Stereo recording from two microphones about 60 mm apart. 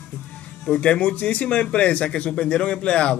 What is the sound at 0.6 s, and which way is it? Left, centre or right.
Speech, centre.